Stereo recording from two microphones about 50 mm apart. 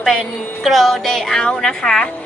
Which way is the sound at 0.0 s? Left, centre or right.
Centre.